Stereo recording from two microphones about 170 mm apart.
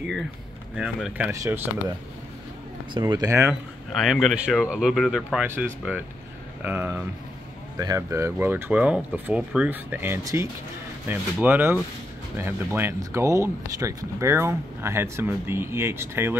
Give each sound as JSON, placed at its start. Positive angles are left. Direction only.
{"t": 0.7, "sound": "speech", "side_deg": -5}
{"t": 1.3, "sound": "speech", "side_deg": -20}
{"t": 2.9, "sound": "speech", "side_deg": -25}
{"t": 3.9, "sound": "speech", "side_deg": 0}